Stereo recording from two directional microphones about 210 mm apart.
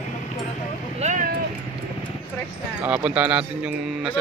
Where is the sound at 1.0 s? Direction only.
35° right (ahead or behind).